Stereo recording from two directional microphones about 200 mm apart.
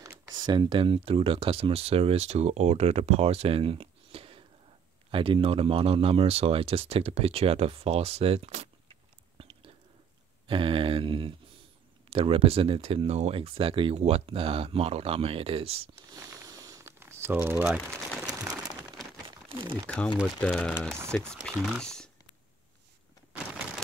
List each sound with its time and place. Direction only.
0.0 s speech: 20° right (ahead or behind)
9.4 s whispering: 30° right (ahead or behind)
10.4 s speech: 25° right (ahead or behind)
15.9 s crumpling: 15° right (ahead or behind)
18.2 s a sound: 15° right (ahead or behind)
19.2 s crumpling: 25° right (ahead or behind)
20.3 s speech: 5° left (ahead or behind)